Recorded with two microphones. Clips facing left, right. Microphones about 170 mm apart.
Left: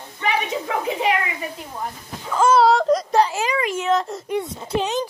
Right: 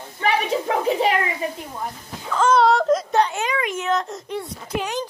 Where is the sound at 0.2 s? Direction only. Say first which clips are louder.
Right 2 dB; 35° right (ahead or behind).